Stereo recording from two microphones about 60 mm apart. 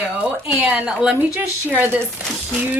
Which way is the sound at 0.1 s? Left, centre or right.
Right.